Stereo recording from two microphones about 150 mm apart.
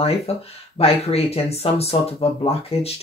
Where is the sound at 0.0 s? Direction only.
40° left (ahead or behind).